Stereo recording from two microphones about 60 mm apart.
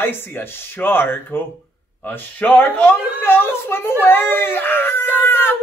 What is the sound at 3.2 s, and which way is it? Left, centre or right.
A man's voice, left.